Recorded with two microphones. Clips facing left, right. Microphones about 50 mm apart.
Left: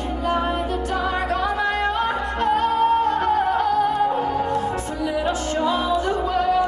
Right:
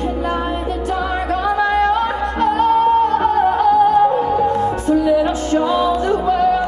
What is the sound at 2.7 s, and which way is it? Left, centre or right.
Music, right.